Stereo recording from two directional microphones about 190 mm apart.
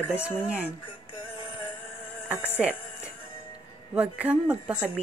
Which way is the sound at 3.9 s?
5° right (ahead or behind).